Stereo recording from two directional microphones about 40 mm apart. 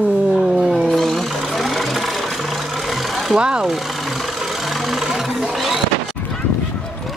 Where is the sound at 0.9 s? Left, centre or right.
Centre.